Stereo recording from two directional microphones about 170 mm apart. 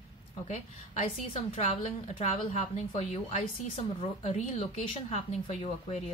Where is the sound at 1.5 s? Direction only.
40° left (ahead or behind).